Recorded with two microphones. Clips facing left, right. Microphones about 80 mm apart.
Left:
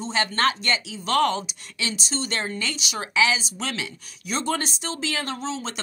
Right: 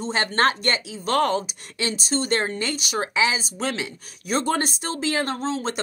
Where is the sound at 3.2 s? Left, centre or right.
Right.